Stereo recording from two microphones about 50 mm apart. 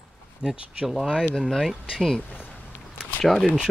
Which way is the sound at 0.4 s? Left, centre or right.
Centre.